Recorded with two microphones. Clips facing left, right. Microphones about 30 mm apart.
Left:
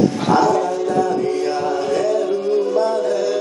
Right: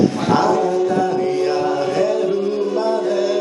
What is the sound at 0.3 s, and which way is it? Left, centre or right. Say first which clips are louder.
Speech: left 2 dB; centre.